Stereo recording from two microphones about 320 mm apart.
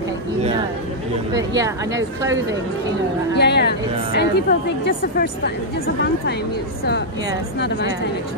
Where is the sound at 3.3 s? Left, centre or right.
Left.